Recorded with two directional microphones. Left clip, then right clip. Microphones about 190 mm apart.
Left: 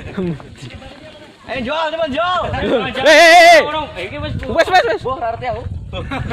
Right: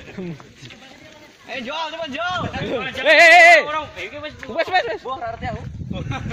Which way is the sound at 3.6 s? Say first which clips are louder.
Left 5 dB; 50° left (ahead or behind).